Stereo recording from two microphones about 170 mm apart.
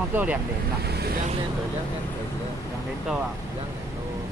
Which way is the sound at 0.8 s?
70° right (ahead or behind).